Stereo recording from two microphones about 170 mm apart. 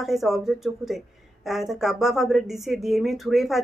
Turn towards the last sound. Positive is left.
turn(degrees=0)  # may be behind; listen again after turning